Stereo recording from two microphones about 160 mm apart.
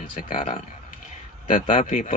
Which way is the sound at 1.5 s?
50° left (ahead or behind).